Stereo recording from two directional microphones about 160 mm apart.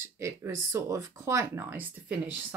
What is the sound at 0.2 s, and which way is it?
Speech, 15° right (ahead or behind).